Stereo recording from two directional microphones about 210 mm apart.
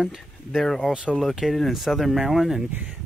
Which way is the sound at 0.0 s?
Centre (ahead or behind).